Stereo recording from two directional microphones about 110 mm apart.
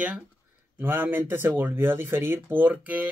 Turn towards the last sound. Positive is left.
turn(degrees=-15)  # may be behind; listen again after turning